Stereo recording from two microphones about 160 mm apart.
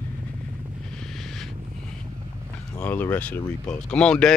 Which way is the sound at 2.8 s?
10° left (ahead or behind).